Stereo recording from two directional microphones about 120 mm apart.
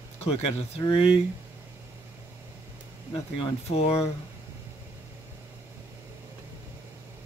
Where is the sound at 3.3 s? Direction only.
60° left (ahead or behind).